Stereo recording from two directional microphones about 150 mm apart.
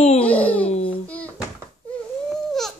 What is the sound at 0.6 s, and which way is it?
Babbling, 45° left (ahead or behind).